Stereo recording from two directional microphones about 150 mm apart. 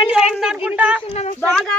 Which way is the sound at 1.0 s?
45° left (ahead or behind).